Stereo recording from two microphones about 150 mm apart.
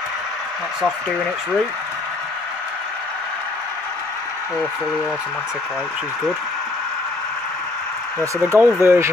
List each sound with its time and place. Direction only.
8.2 s speech: 15° right (ahead or behind)